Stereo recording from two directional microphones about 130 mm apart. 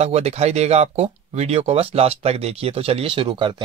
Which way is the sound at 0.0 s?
55° right (ahead or behind).